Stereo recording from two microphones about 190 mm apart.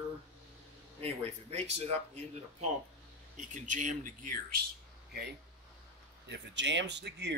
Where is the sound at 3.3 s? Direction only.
40° right (ahead or behind).